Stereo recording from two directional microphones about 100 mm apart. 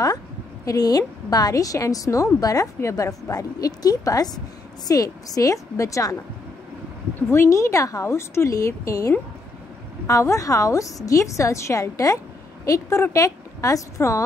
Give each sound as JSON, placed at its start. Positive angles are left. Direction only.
{"t": 0.7, "sound": "a woman's voice", "side_deg": 40}
{"t": 7.2, "sound": "a woman's voice", "side_deg": 25}